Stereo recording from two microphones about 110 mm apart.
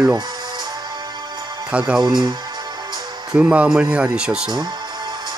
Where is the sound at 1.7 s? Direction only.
10° right (ahead or behind).